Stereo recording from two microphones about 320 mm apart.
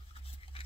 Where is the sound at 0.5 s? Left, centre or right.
Centre.